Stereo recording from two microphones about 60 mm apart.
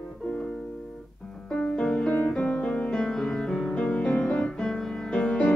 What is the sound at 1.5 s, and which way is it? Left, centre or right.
Music, centre.